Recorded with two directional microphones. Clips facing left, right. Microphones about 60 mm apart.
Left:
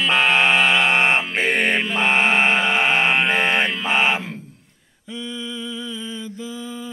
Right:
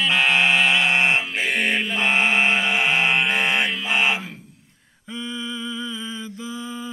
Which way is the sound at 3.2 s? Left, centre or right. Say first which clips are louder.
Left 2 dB; left.